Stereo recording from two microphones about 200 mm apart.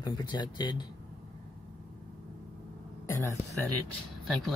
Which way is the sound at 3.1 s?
15° left (ahead or behind).